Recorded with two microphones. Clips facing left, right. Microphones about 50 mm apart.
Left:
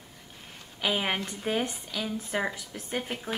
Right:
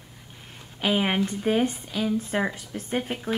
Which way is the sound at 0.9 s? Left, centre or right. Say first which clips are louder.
Right 5 dB; centre.